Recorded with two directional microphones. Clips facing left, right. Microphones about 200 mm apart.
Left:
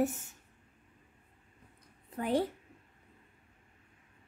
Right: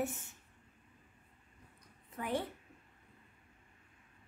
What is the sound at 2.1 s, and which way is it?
Speech, 35° left (ahead or behind).